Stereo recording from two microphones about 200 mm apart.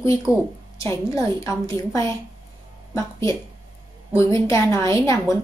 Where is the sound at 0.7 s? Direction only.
15° left (ahead or behind).